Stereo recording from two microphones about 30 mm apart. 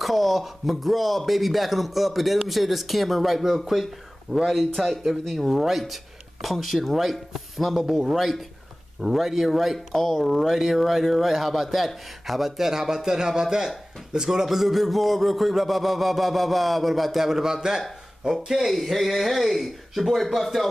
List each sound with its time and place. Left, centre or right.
0.0 s speech: centre
9.9 s speech: centre; by 18.4 s right
18.7 s speech: centre